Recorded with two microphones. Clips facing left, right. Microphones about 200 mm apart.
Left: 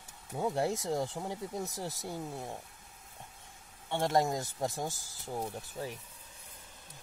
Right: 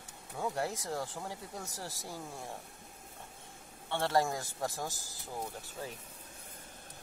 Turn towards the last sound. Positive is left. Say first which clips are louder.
# left 3 dB
turn(degrees=15)  # may be behind; listen again after turning